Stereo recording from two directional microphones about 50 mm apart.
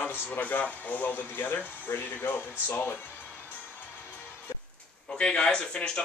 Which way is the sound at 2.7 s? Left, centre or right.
Left.